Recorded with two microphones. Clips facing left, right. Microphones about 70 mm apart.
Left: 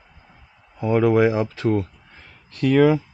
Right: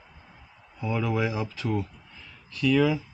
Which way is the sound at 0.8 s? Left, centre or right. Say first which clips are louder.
Left 10 dB; left.